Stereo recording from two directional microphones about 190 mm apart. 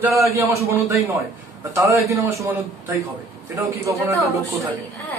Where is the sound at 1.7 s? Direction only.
15° right (ahead or behind).